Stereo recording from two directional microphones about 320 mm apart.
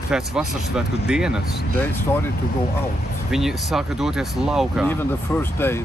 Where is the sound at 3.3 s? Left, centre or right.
Centre.